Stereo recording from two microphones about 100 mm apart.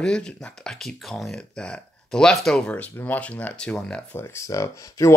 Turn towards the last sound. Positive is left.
turn(degrees=35)  # may be behind; listen again after turning